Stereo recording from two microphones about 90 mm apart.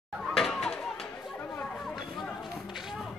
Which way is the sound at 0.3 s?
5° left (ahead or behind).